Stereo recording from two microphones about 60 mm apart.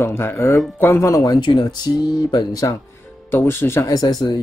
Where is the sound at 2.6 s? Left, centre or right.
Left.